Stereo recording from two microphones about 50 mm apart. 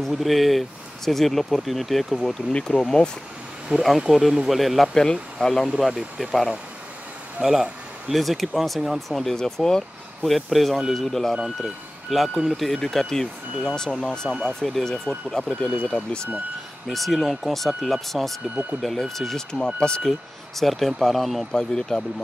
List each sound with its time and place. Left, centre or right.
0.1 s speech: centre
3.7 s speech: centre
4.9 s speech: centre
5.8 s speech: centre
7.4 s speech: right
8.1 s speech: centre
9.2 s speech: centre
10.3 s speech: centre
15.8 s speech: centre
16.8 s speech: centre
18.5 s speech: right
18.8 s speech: centre